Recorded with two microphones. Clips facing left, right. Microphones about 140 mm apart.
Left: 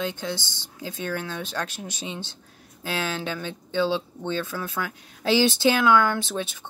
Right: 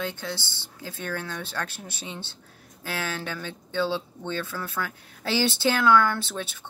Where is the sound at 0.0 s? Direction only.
20° left (ahead or behind).